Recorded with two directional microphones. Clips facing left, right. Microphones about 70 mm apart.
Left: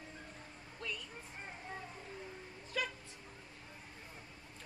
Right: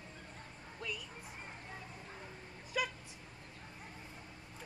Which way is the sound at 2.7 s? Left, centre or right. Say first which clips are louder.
Right 2 dB; centre.